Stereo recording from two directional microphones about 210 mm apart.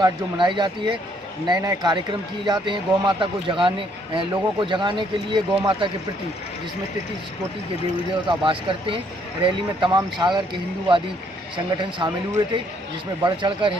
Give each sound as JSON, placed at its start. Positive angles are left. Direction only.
{"t": 0.0, "sound": "speech", "side_deg": -20}
{"t": 8.3, "sound": "speech", "side_deg": -25}
{"t": 12.0, "sound": "speech", "side_deg": -20}
{"t": 13.2, "sound": "speech", "side_deg": -25}